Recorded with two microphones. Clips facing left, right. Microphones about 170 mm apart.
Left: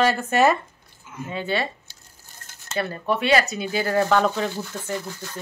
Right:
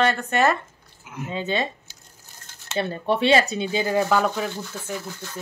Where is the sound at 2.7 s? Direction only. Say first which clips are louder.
Right 2 dB; 25° right (ahead or behind).